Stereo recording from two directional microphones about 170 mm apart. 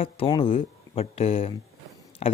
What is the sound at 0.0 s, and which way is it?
Speech, 30° left (ahead or behind).